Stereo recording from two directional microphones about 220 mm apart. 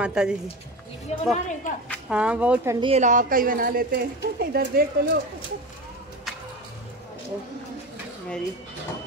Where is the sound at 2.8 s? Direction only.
30° right (ahead or behind).